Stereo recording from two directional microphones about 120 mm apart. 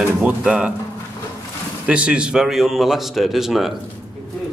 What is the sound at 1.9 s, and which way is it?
Speech, 10° right (ahead or behind).